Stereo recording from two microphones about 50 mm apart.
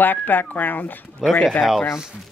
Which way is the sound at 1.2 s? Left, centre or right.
Centre.